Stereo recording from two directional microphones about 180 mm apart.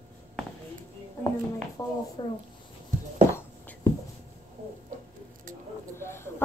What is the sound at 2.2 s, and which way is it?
Speech, 25° left (ahead or behind).